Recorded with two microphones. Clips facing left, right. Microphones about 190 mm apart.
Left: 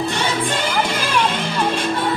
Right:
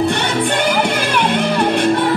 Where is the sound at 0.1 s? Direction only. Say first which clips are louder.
Right 4 dB; 65° right (ahead or behind).